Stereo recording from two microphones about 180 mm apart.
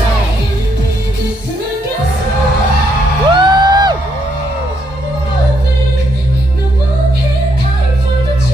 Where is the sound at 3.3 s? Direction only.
25° right (ahead or behind).